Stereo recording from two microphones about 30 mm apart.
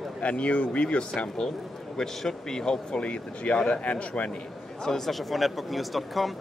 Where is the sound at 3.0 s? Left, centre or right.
Left.